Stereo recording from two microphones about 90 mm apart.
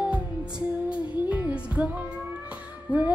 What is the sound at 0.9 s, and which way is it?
Music, 15° right (ahead or behind).